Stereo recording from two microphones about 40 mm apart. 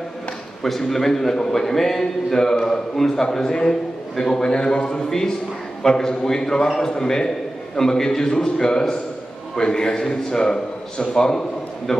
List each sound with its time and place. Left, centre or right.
0.7 s a man's voice: centre
11.9 s a man's voice: centre